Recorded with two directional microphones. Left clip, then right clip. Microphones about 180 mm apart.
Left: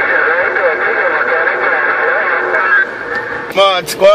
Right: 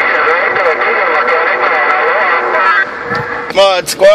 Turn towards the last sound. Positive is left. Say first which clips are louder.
# right 2 dB
turn(degrees=-30)  # may be behind; listen again after turning